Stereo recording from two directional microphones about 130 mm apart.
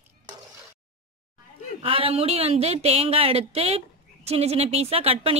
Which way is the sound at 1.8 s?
45° right (ahead or behind).